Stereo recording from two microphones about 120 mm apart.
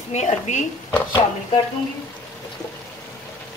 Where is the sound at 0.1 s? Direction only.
85° left.